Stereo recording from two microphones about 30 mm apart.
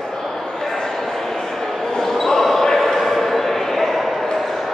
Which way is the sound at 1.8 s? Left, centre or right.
Centre.